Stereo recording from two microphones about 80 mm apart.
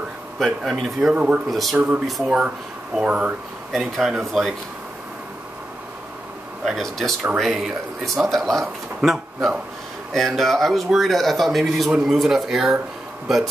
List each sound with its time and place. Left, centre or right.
0.4 s speech: centre
1.1 s speech: centre
1.5 s speech: centre
1.8 s speech: centre
2.0 s speech: centre
2.3 s speech: centre
3.7 s speech: centre
6.6 s speech: centre